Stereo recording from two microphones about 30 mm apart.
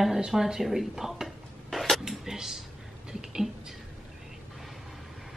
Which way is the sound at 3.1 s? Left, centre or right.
Right.